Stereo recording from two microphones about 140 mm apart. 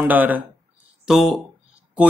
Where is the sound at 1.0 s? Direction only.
Centre (ahead or behind).